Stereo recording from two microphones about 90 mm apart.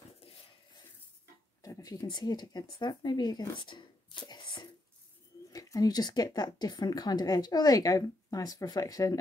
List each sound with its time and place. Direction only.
1.6 s speech: 40° left (ahead or behind); by 4.6 s 60° left (ahead or behind)
5.5 s speech: 40° left (ahead or behind)